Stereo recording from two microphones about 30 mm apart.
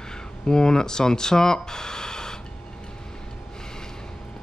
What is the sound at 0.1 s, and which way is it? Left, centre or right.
Speech, left.